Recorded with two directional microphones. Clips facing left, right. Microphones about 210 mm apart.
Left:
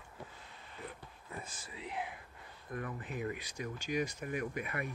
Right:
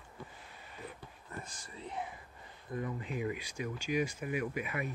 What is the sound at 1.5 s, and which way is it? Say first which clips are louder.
Speech: left 1 dB; 5° left (ahead or behind).